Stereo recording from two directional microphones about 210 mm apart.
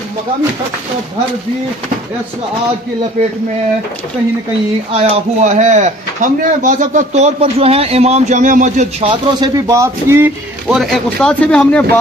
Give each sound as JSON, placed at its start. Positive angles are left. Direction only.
{"t": 4.9, "sound": "speech", "side_deg": -30}
{"t": 9.1, "sound": "speech", "side_deg": -15}
{"t": 10.7, "sound": "speech", "side_deg": 0}